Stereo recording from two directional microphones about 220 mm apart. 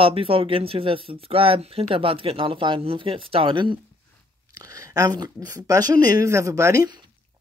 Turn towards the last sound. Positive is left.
turn(degrees=-15)  # may be behind; listen again after turning